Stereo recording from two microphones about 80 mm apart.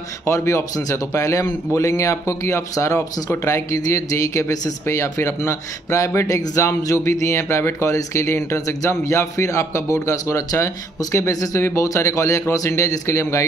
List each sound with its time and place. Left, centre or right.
0.3 s speech: left
7.1 s speech: left